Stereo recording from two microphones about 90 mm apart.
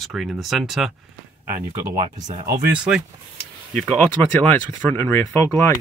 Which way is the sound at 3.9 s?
15° left (ahead or behind).